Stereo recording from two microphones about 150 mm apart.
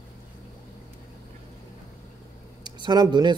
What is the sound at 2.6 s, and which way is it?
Speech, 30° right (ahead or behind).